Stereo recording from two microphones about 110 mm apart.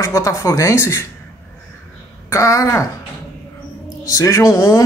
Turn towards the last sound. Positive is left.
turn(degrees=25)  # may be behind; listen again after turning